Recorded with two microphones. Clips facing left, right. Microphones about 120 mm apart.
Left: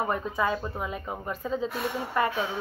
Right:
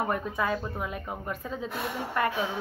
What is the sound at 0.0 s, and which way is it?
Speech, 5° left (ahead or behind).